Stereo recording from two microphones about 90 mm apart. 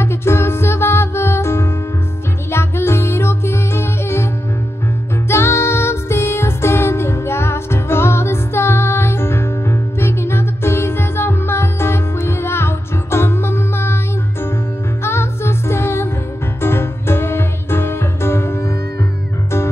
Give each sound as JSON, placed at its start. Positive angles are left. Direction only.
{"t": 0.0, "sound": "music", "side_deg": 30}
{"t": 5.3, "sound": "music", "side_deg": 30}
{"t": 15.0, "sound": "music", "side_deg": 30}